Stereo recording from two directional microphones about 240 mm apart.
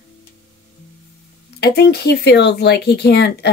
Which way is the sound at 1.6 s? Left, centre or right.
Left.